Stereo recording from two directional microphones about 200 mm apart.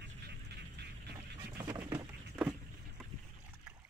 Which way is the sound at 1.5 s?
15° right (ahead or behind).